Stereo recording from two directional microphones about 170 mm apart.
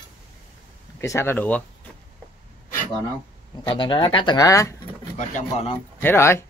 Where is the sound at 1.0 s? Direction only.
15° left (ahead or behind).